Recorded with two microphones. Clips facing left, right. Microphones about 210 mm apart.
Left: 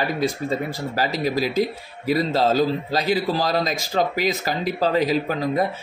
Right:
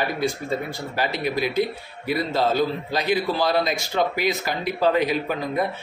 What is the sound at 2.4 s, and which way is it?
Speech, 90° left.